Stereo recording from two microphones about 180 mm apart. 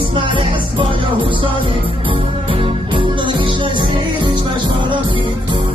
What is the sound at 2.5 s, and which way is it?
Music, 25° right (ahead or behind).